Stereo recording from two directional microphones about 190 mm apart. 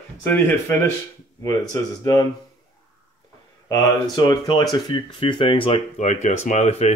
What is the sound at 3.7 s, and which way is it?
Speech, 25° left (ahead or behind).